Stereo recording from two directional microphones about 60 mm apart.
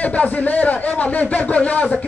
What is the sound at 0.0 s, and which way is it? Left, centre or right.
A man's voice, left.